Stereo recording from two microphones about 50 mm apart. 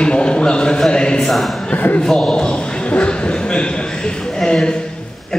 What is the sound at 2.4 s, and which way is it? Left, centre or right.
A man's voice, left.